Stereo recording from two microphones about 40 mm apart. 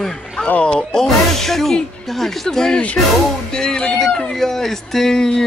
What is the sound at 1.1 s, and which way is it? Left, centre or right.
Speech, centre.